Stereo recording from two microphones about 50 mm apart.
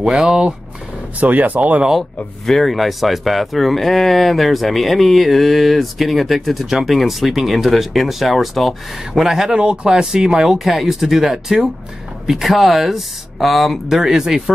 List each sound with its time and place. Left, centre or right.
0.1 s speech: centre
1.2 s speech: right
2.4 s speech: centre
13.9 s speech: centre